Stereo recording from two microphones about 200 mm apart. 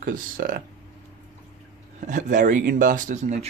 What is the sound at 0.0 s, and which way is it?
Speech, 45° right (ahead or behind).